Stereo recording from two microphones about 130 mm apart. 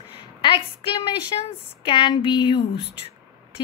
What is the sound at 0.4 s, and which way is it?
A woman's voice, 40° left (ahead or behind).